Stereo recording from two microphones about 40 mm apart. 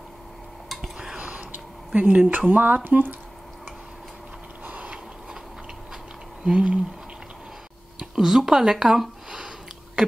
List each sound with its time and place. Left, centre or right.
0.9 s a sound: right
2.0 s speech: right
2.3 s speech: right
4.6 s a sound: right
6.4 s speech: right
8.0 s speech: centre